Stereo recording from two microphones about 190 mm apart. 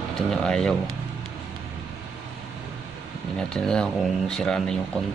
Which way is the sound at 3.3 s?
5° left (ahead or behind).